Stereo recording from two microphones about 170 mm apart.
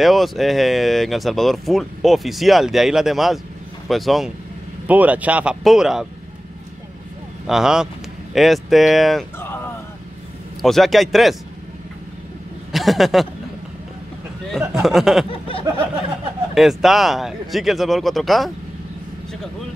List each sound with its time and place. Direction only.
0.0 s speech: centre (ahead or behind)
7.4 s speech: 5° right (ahead or behind)
10.6 s speech: centre (ahead or behind)
12.7 s speech: centre (ahead or behind)
14.7 s speech: centre (ahead or behind)
15.2 s a sound: 35° left (ahead or behind)
16.5 s speech: centre (ahead or behind)